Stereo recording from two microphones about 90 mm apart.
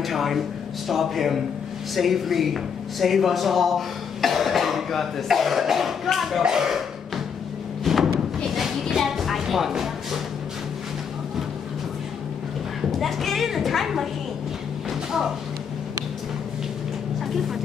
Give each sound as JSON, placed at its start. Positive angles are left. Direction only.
{"t": 0.0, "sound": "speech", "side_deg": 0}
{"t": 7.8, "sound": "thump", "side_deg": 0}
{"t": 8.5, "sound": "music", "side_deg": -5}
{"t": 13.0, "sound": "speech", "side_deg": 0}